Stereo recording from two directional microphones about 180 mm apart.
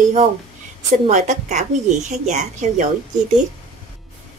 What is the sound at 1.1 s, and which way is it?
Speech, 40° right (ahead or behind).